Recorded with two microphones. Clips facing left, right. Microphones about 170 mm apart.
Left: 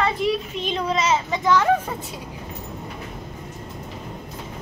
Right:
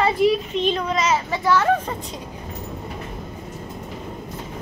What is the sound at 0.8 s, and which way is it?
Child singing, 25° left (ahead or behind).